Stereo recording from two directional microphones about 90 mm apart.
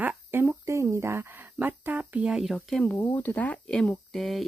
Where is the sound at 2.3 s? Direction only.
Centre (ahead or behind).